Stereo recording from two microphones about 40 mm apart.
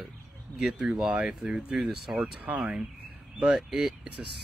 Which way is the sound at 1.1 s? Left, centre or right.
Centre.